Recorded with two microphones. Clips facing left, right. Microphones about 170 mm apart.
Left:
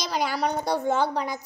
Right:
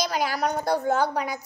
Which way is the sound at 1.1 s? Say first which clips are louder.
Even; 10° right (ahead or behind).